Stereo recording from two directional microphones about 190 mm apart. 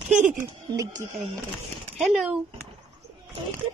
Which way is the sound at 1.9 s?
Centre (ahead or behind).